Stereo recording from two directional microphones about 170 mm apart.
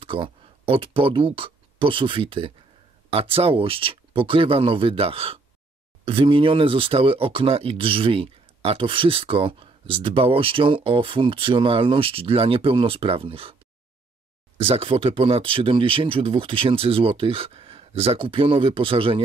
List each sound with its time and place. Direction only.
0.0 s speech: 30° right (ahead or behind)
14.6 s speech: 35° right (ahead or behind)